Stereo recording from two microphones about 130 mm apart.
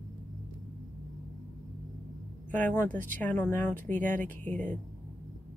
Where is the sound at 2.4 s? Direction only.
15° left (ahead or behind).